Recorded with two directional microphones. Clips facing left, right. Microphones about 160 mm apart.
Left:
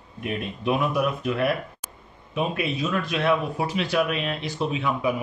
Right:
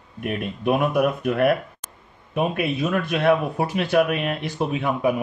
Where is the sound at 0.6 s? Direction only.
55° right (ahead or behind).